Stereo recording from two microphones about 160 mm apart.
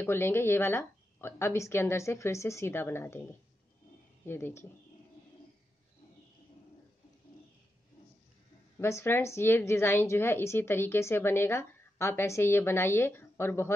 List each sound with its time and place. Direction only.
0.0 s a woman's voice: 15° left (ahead or behind)
4.3 s a woman's voice: 15° left (ahead or behind)
8.7 s a woman's voice: 15° left (ahead or behind)